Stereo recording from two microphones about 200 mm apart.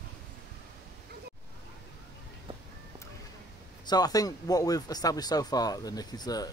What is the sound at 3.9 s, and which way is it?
Speech, 20° left (ahead or behind).